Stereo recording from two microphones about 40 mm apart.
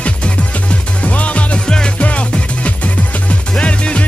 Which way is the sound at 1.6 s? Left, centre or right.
Left.